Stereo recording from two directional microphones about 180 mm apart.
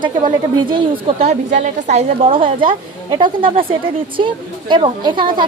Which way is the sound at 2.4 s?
50° right (ahead or behind).